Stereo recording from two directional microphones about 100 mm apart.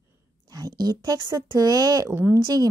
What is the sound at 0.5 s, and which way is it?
A woman's voice, 40° right (ahead or behind).